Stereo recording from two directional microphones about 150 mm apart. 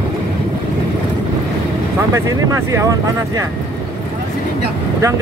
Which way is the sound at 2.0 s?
20° right (ahead or behind).